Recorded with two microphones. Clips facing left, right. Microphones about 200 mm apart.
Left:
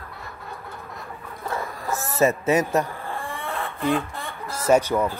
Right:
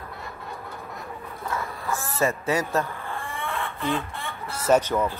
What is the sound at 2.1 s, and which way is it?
Speech, 20° left (ahead or behind).